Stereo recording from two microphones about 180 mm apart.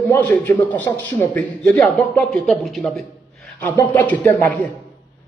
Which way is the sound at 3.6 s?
15° left (ahead or behind).